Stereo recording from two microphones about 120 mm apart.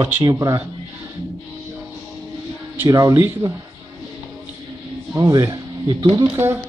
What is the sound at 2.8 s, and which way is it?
Speech, 30° right (ahead or behind).